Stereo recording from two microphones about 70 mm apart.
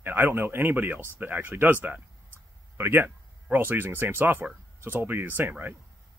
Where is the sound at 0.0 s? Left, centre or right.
Right.